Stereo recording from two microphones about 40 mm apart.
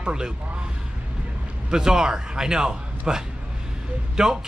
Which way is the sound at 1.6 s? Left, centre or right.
Centre.